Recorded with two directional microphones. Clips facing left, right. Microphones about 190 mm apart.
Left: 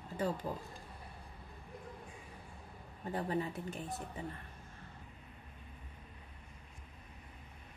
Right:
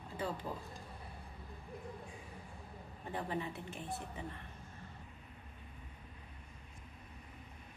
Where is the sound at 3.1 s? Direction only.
40° left (ahead or behind).